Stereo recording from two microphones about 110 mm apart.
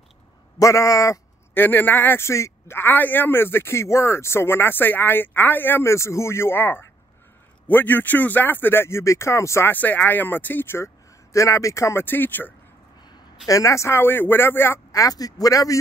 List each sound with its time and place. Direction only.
0.6 s a man's voice: 30° left (ahead or behind)
1.5 s a man's voice: 20° left (ahead or behind)
13.5 s a man's voice: 30° left (ahead or behind)